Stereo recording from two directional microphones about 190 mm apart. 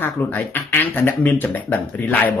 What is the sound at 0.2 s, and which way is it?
Speech, 10° left (ahead or behind).